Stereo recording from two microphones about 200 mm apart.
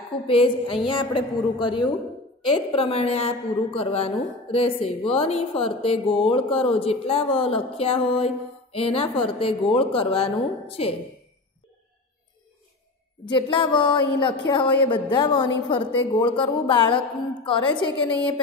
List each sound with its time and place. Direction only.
0.3 s a woman's voice: 25° left (ahead or behind)
13.2 s a woman's voice: 25° left (ahead or behind)